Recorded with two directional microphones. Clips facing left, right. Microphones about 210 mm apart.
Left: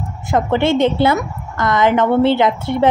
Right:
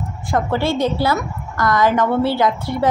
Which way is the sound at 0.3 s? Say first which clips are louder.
Left 4 dB; 20° left (ahead or behind).